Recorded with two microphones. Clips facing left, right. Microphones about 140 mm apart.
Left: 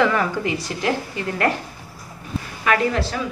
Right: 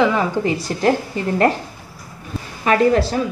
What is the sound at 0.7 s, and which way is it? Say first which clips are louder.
Speech: right 5 dB; 40° right (ahead or behind).